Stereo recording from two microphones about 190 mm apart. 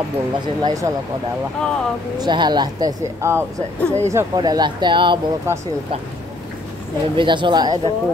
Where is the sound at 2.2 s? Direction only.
25° right (ahead or behind).